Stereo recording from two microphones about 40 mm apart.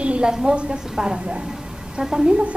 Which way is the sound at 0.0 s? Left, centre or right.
Right.